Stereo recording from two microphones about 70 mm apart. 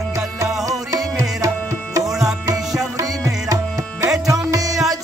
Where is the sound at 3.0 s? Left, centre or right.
Right.